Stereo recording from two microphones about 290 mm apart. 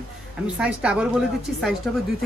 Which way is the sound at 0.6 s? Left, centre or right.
Centre.